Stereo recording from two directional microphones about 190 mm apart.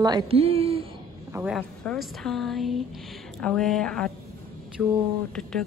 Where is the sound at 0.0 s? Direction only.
25° right (ahead or behind).